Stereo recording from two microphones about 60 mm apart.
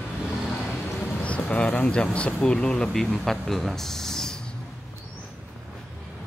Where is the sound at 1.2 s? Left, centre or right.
Left.